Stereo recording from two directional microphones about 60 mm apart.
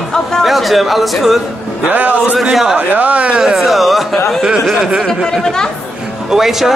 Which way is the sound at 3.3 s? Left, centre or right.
Centre.